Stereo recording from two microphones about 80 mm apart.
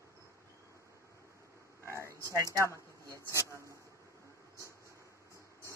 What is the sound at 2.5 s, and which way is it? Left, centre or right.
Speech, right.